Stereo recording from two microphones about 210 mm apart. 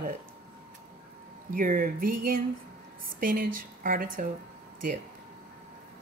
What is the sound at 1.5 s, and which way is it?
A woman's voice, 40° right (ahead or behind).